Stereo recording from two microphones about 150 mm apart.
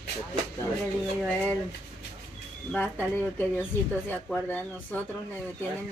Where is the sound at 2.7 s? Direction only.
15° left (ahead or behind).